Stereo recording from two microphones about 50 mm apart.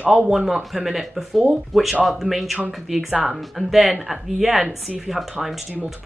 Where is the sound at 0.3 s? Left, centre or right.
Centre.